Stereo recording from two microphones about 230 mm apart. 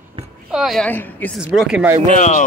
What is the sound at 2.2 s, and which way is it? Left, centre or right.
Speech, left.